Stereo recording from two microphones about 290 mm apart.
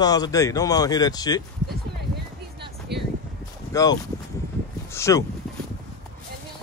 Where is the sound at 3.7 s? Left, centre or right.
Centre.